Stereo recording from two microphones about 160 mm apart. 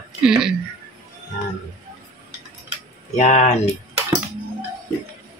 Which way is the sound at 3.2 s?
45° left (ahead or behind).